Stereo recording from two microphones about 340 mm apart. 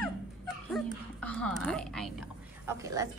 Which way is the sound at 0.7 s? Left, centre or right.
Centre.